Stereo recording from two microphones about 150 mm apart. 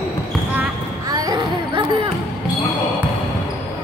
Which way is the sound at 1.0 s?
25° right (ahead or behind).